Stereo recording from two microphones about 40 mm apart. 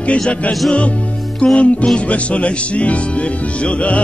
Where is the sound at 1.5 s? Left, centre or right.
Left.